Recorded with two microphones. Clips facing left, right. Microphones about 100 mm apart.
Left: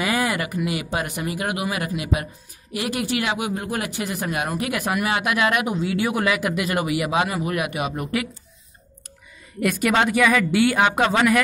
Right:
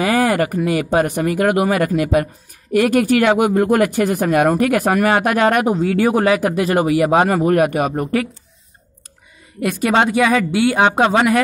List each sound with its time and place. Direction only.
0.0 s speech: 40° right (ahead or behind)
9.6 s speech: 30° right (ahead or behind)